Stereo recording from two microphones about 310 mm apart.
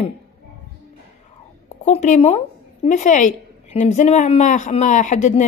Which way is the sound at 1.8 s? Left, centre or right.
Left.